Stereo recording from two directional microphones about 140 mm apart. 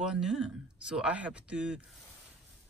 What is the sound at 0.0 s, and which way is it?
Speech, 5° right (ahead or behind).